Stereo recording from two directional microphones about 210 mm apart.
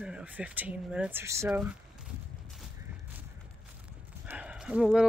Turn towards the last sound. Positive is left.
turn(degrees=-5)  # may be behind; listen again after turning